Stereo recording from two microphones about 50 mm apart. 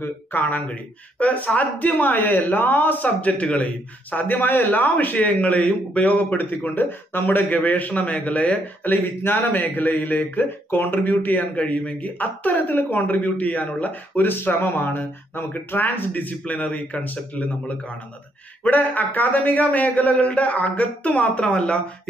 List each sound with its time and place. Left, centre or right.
0.0 s speech: left
11.5 s speech: left
18.6 s speech: left